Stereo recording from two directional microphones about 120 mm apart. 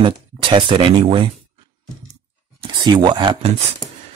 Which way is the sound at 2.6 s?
40° right (ahead or behind).